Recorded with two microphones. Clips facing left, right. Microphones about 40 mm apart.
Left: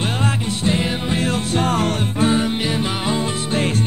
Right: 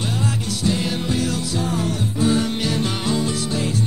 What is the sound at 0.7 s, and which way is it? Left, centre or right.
Music, left.